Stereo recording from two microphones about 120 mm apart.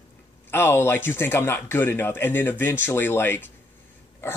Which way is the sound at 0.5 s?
20° left (ahead or behind).